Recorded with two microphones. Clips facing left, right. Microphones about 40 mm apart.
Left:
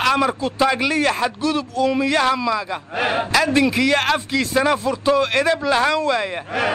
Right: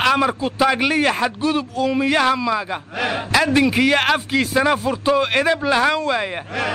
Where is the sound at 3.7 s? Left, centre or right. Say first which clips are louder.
Right 1 dB; right.